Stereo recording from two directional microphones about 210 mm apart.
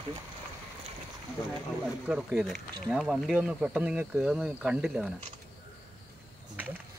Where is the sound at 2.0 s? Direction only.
Centre (ahead or behind).